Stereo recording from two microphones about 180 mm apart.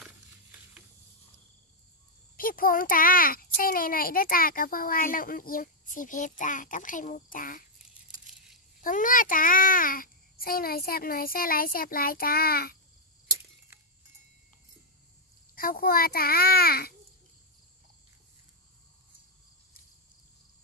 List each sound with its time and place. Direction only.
0.0 s a sound: 10° right (ahead or behind)
2.3 s a child's voice: 50° left (ahead or behind)
8.8 s a child's voice: 50° left (ahead or behind)
15.5 s a child's voice: 55° left (ahead or behind)